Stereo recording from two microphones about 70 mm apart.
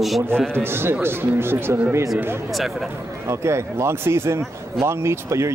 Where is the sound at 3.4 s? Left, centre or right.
Right.